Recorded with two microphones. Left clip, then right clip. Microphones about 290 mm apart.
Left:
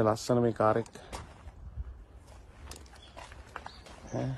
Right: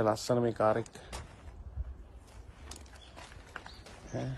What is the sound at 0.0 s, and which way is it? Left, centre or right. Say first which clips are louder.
Speech: left 2 dB; centre.